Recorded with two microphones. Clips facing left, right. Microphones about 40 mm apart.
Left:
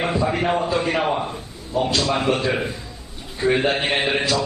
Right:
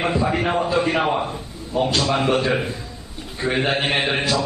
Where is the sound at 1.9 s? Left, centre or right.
Right.